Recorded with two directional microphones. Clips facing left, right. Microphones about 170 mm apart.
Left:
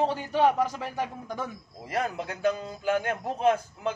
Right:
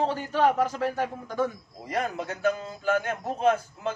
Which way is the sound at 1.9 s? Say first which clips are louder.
Right 1 dB; 15° left (ahead or behind).